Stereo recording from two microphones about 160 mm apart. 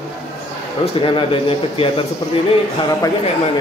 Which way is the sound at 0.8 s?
35° left (ahead or behind).